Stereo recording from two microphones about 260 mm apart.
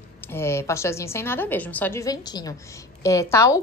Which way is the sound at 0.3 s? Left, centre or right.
Centre.